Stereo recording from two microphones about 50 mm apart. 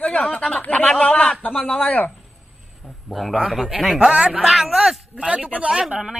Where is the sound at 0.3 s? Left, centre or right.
Left.